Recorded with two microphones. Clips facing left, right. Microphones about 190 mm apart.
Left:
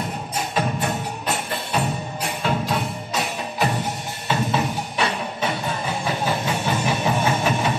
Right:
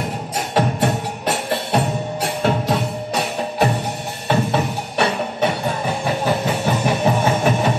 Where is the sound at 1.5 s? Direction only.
70° right (ahead or behind).